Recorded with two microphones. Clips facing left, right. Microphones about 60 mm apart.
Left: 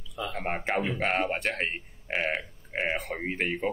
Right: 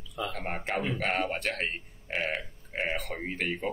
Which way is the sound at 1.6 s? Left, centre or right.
Left.